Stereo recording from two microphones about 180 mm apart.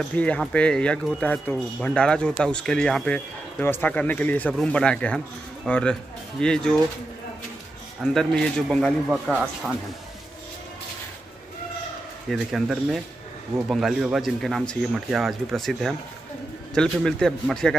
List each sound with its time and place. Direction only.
0.1 s speech: 5° left (ahead or behind)
8.0 s speech: centre (ahead or behind)
12.3 s speech: centre (ahead or behind)